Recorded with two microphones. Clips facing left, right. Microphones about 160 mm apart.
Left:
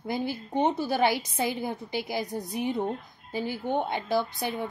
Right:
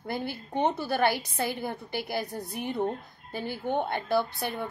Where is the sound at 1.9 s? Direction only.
15° left (ahead or behind).